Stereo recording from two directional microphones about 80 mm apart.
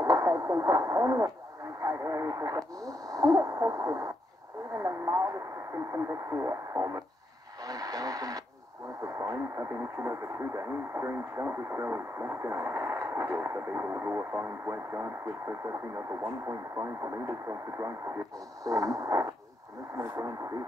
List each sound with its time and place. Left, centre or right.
0.0 s speech: right
7.6 s speech: right